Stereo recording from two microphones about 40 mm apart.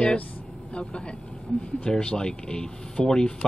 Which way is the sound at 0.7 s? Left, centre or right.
Left.